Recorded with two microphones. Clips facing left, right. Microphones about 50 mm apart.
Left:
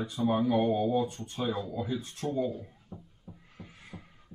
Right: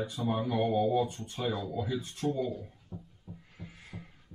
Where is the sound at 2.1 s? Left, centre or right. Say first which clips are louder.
Left 1 dB; centre.